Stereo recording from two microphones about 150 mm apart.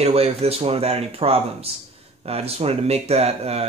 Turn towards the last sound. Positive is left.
turn(degrees=-45)  # may be behind; listen again after turning